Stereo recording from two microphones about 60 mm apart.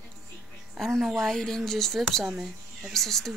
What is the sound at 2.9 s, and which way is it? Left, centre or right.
Speech, centre.